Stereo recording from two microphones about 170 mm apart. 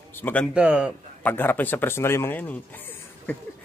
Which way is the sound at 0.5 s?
5° right (ahead or behind).